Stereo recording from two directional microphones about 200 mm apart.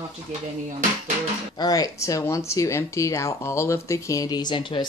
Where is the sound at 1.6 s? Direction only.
20° left (ahead or behind).